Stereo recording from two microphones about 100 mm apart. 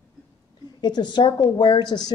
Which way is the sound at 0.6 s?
45° left (ahead or behind).